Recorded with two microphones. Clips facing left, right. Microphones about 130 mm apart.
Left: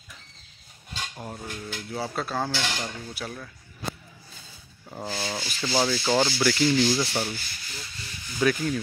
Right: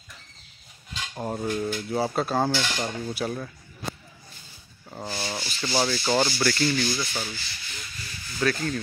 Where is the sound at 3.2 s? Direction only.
20° right (ahead or behind).